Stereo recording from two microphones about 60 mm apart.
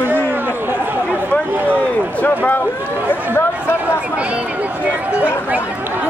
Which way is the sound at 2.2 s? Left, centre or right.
Left.